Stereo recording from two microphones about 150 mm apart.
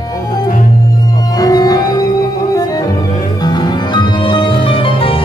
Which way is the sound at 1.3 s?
25° left (ahead or behind).